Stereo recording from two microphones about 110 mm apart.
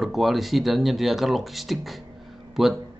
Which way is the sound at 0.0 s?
Centre (ahead or behind).